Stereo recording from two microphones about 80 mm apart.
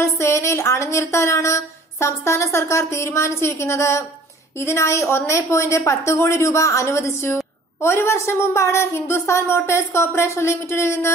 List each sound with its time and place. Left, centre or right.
0.0 s speech: left